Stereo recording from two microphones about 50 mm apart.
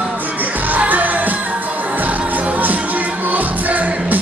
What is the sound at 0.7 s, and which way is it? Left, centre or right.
Music, right.